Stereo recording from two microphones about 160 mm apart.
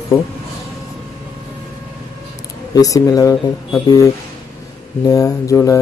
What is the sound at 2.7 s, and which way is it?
Speech, 20° left (ahead or behind).